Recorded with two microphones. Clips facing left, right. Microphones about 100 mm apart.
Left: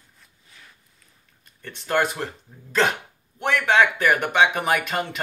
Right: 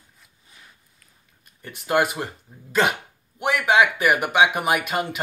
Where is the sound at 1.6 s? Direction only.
10° right (ahead or behind).